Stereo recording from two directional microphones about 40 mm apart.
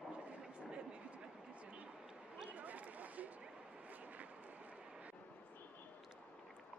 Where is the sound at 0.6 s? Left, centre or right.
Right.